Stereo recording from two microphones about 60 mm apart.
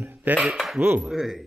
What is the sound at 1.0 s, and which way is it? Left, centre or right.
Speech, centre.